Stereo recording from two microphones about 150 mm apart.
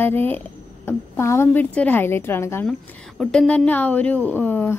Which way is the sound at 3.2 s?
5° left (ahead or behind).